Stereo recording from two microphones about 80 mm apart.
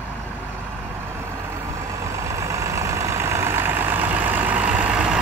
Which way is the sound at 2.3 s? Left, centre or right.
Right.